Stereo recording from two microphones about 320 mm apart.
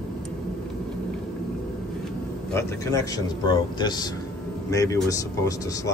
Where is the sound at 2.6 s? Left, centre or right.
Centre.